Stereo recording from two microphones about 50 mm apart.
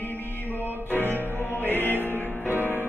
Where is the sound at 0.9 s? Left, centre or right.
Left.